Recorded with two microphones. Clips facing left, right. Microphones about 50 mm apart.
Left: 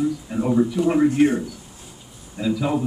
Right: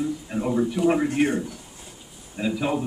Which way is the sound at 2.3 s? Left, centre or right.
Right.